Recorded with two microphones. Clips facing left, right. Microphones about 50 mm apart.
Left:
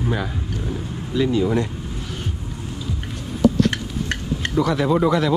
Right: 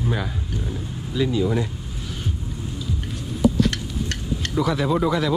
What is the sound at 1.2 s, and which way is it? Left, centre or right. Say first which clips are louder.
Speech: left 3 dB; left.